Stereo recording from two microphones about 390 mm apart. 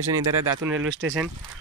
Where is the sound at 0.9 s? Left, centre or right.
Right.